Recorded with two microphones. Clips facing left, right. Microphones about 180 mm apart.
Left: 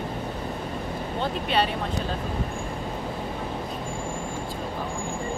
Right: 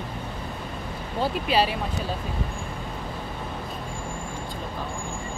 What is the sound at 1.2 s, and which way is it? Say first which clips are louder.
Speech: right 2 dB; 5° right (ahead or behind).